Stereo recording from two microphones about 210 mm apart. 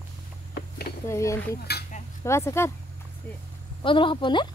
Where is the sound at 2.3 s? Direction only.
15° left (ahead or behind).